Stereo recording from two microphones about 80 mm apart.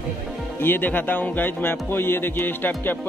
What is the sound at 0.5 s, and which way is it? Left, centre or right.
Speech, left.